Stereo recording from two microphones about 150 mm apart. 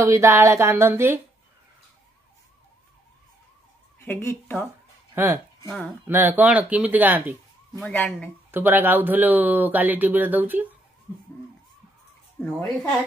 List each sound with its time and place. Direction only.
0.0 s speech: 20° right (ahead or behind)
4.0 s speech: 15° left (ahead or behind)
5.1 s speech: 15° right (ahead or behind)
5.7 s speech: 10° left (ahead or behind)
6.0 s speech: 15° right (ahead or behind)
7.8 s speech: 10° left (ahead or behind)
8.5 s speech: 15° right (ahead or behind)
12.4 s speech: 10° left (ahead or behind)